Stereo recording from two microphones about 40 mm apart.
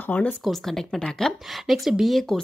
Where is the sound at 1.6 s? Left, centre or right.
Centre.